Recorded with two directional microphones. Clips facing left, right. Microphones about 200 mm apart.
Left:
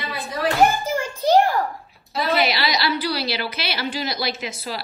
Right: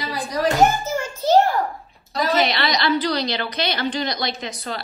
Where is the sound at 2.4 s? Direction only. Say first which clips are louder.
Right 1 dB; 10° left (ahead or behind).